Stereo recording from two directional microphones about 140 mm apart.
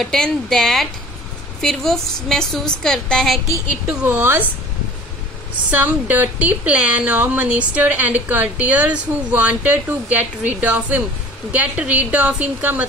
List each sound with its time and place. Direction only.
0.0 s a woman's voice: 5° left (ahead or behind)
4.0 s speech: 15° right (ahead or behind)
5.7 s speech: 10° right (ahead or behind)